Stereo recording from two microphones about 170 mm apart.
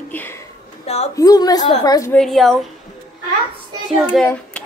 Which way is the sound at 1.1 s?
20° left (ahead or behind).